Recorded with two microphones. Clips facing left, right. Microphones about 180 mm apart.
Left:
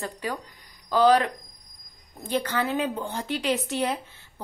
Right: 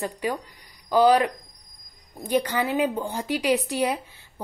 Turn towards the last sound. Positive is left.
turn(degrees=-10)  # may be behind; listen again after turning